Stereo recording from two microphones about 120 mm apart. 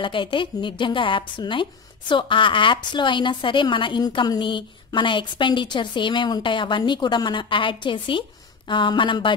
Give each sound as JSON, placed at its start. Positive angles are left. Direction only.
{"t": 0.0, "sound": "a woman's voice", "side_deg": 45}